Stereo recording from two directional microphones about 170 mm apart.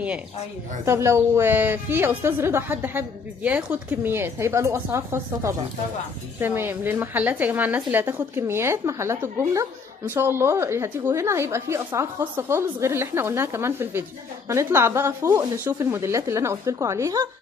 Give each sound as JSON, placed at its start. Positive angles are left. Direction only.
{"t": 0.8, "sound": "a woman's voice", "side_deg": -15}